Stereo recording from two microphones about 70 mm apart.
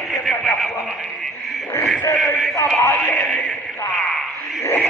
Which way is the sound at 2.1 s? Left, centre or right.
Centre.